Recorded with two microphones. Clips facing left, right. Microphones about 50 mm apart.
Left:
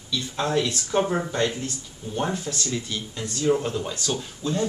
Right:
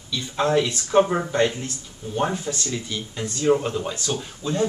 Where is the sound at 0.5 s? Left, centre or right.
Centre.